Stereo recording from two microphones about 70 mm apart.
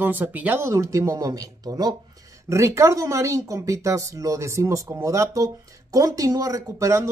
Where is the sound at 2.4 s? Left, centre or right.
Right.